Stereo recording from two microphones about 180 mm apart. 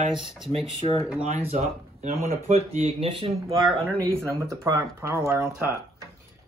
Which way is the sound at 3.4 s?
15° right (ahead or behind).